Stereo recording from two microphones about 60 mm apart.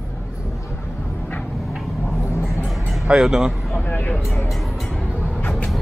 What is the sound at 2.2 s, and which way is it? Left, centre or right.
Vehicle, left.